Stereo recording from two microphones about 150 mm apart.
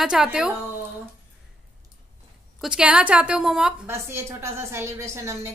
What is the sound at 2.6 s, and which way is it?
A woman's voice, 5° right (ahead or behind).